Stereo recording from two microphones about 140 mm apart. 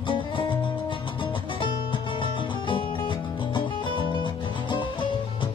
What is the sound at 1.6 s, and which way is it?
Music, 35° left (ahead or behind).